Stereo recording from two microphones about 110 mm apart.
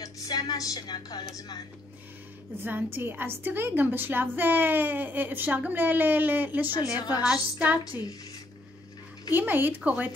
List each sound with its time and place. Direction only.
0.0 s a woman's voice: 35° left (ahead or behind)
2.6 s a woman's voice: 20° right (ahead or behind)
7.0 s a woman's voice: 35° left (ahead or behind)
7.2 s a woman's voice: 15° right (ahead or behind)
9.3 s a woman's voice: 20° right (ahead or behind)